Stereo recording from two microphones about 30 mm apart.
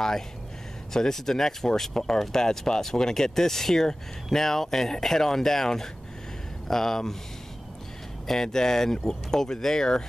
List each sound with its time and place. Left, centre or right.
0.9 s speech: centre
8.3 s speech: centre